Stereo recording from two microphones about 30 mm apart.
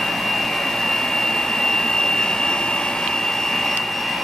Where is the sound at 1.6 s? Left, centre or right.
Centre.